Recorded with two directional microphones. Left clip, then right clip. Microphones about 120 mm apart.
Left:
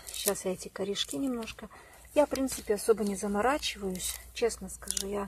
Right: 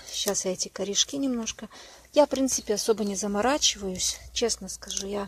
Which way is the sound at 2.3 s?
5° right (ahead or behind).